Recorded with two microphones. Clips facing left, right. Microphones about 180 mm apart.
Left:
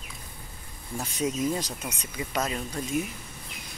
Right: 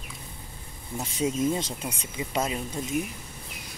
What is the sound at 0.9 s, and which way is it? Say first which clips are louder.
Speech: right 1 dB; 25° right (ahead or behind).